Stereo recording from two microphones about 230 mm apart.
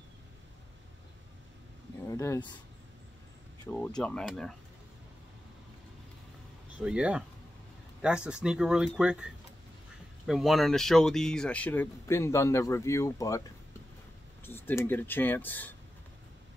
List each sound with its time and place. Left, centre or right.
2.0 s speech: centre
3.7 s speech: centre
6.8 s speech: centre
14.4 s speech: centre